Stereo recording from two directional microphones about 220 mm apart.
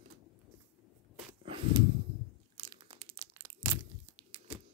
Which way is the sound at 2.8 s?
25° right (ahead or behind).